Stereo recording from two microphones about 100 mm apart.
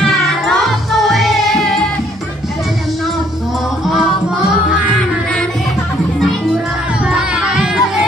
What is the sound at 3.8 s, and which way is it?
Music, 5° right (ahead or behind).